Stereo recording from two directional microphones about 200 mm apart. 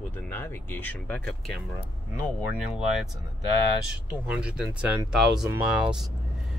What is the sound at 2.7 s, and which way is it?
Speech, centre (ahead or behind).